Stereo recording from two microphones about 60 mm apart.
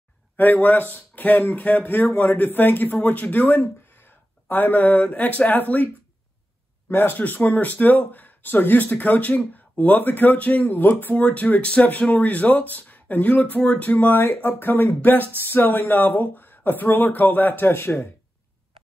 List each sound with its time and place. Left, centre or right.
0.4 s speech: left
3.6 s speech: left
6.9 s speech: left